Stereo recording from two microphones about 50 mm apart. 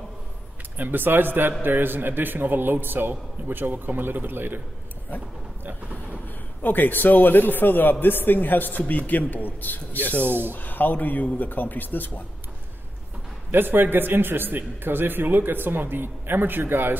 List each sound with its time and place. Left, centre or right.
0.7 s a man's voice: right
6.2 s a man's voice: left
13.5 s a man's voice: right